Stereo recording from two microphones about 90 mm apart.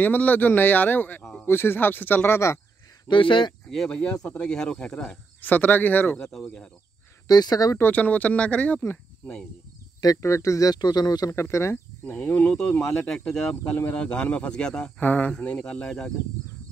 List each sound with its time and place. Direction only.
0.0 s speech: 20° left (ahead or behind)
3.1 s speech: 65° left (ahead or behind)
3.9 s speech: 15° left (ahead or behind)
7.2 s speech: 50° left (ahead or behind)
7.8 s speech: 15° left (ahead or behind)
9.9 s speech: 40° left (ahead or behind)
11.3 s speech: 30° left (ahead or behind)
12.0 s speech: 15° left (ahead or behind)